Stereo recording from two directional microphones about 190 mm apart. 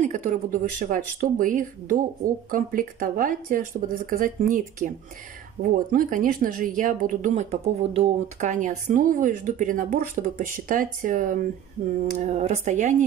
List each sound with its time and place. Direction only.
0.0 s speech: 40° right (ahead or behind)